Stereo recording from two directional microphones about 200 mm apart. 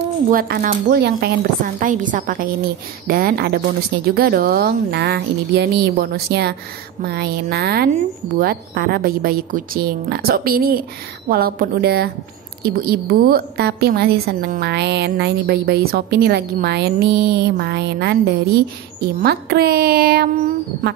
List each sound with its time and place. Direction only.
0.3 s a woman's voice: 45° right (ahead or behind)